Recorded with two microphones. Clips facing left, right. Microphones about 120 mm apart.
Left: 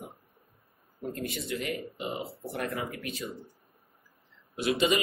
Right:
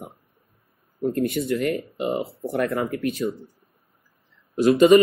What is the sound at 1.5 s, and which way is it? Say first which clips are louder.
Speech: right 10 dB; 55° right (ahead or behind).